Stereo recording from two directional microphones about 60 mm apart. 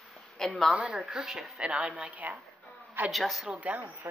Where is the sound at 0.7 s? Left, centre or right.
Right.